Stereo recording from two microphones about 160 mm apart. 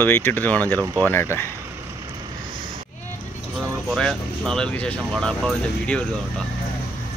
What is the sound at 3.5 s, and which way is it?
Speech, centre (ahead or behind).